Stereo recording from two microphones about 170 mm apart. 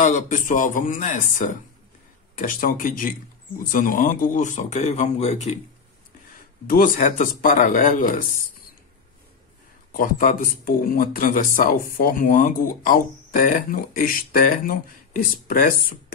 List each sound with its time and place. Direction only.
0.0 s speech: 45° left (ahead or behind)
6.7 s speech: 50° left (ahead or behind)
9.9 s speech: 50° left (ahead or behind)